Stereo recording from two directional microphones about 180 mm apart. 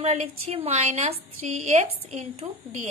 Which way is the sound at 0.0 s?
35° right (ahead or behind).